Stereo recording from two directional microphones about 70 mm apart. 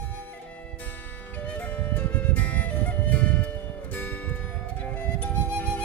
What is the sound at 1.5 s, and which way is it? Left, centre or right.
Music, left.